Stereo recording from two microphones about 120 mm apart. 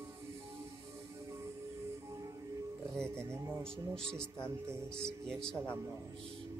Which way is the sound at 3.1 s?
20° right (ahead or behind).